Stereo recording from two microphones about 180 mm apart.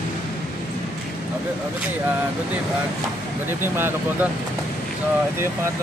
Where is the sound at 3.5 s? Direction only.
10° right (ahead or behind).